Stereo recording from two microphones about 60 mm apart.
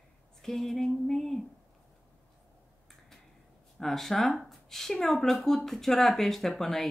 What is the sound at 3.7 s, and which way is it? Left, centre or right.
A woman's voice, centre.